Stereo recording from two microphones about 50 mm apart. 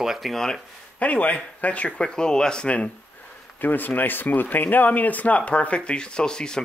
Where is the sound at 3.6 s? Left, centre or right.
Left.